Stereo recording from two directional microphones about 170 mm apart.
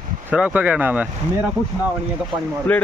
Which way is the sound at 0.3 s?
10° right (ahead or behind).